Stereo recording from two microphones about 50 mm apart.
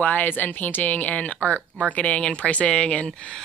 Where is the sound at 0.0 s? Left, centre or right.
Left.